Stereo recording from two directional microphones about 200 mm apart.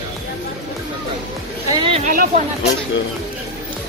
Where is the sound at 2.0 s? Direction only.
40° right (ahead or behind).